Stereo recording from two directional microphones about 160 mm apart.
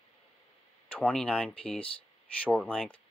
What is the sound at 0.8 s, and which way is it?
Speech, 10° left (ahead or behind).